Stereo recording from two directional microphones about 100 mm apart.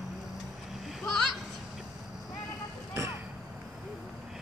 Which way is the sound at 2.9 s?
30° right (ahead or behind).